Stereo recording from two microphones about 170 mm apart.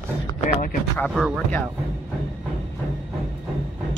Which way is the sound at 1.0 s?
Centre (ahead or behind).